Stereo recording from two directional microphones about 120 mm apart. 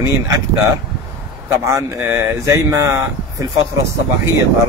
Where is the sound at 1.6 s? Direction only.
25° right (ahead or behind).